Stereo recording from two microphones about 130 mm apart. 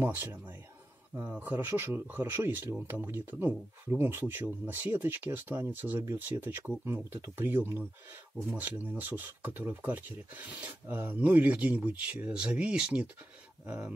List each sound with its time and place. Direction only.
0.0 s speech: 15° right (ahead or behind)